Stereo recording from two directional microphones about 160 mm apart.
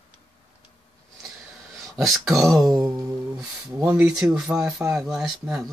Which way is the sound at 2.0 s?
Centre (ahead or behind).